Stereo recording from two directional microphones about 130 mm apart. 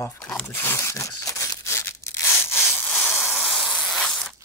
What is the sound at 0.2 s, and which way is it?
Zipper, 10° left (ahead or behind).